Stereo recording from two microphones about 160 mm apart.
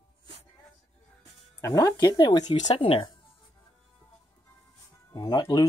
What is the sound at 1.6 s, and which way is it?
Speech, 20° left (ahead or behind).